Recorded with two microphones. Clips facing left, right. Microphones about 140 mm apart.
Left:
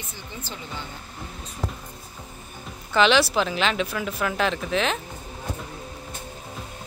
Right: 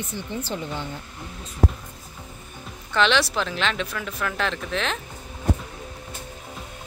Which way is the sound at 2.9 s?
5° left (ahead or behind).